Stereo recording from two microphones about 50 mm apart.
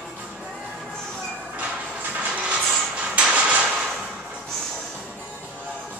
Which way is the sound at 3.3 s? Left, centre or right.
Right.